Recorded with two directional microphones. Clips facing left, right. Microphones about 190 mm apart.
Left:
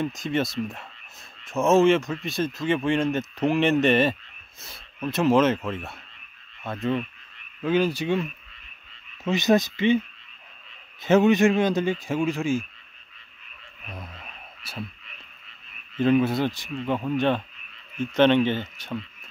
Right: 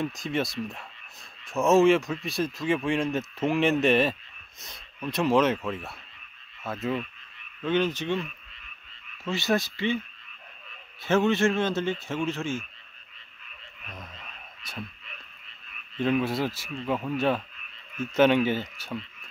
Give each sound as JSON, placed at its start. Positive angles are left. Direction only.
{"t": 0.0, "sound": "speech", "side_deg": 0}
{"t": 7.6, "sound": "a man's voice", "side_deg": 10}
{"t": 9.2, "sound": "speech", "side_deg": 20}
{"t": 11.0, "sound": "a man's voice", "side_deg": 15}
{"t": 16.0, "sound": "speech", "side_deg": 0}